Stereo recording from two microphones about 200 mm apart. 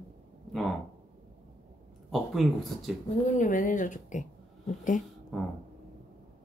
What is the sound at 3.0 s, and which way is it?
Speech, 40° left (ahead or behind).